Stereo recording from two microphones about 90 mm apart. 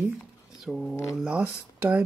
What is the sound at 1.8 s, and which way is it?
Speech, 20° right (ahead or behind).